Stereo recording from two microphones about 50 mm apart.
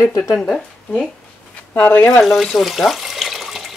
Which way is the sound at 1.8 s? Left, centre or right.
Left.